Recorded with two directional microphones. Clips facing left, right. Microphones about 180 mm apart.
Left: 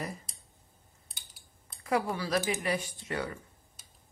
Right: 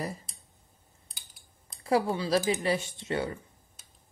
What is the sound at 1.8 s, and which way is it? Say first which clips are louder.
Speech: right 4 dB; 30° right (ahead or behind).